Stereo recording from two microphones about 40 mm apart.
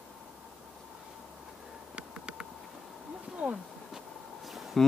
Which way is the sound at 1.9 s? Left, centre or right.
Right.